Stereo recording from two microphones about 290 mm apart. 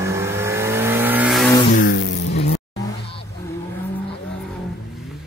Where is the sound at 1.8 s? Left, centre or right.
Left.